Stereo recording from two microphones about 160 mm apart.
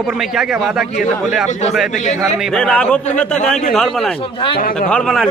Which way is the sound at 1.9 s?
50° left (ahead or behind).